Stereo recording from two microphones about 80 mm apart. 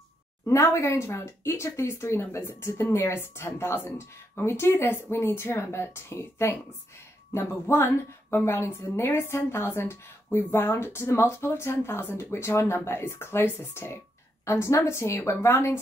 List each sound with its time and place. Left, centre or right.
0.5 s a woman's voice: left